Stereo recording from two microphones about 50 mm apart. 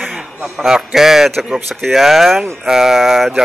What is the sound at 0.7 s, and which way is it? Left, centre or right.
Speech, centre.